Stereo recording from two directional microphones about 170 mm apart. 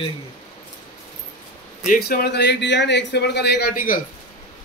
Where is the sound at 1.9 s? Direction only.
65° left (ahead or behind).